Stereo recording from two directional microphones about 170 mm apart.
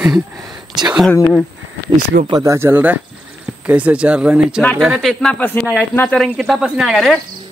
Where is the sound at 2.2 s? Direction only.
20° right (ahead or behind); by 7.2 s centre (ahead or behind).